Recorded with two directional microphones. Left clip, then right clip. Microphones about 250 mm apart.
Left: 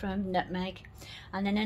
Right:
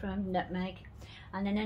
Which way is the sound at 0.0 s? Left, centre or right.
Left.